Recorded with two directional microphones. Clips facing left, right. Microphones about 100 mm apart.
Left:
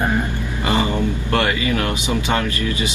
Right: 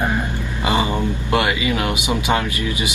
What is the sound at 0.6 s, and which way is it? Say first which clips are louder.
Speech: even; 15° right (ahead or behind).